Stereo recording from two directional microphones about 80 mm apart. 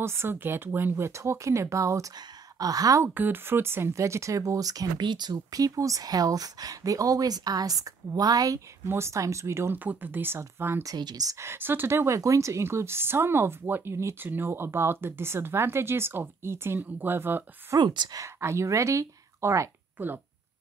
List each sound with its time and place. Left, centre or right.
0.0 s speech: right
3.0 s speech: right
5.0 s speech: right
8.8 s speech: right
11.0 s speech: right
11.3 s speech: right
12.2 s speech: right
17.7 s speech: right
18.1 s speech: right